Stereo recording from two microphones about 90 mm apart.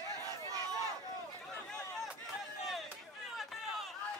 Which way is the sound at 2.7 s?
Centre (ahead or behind).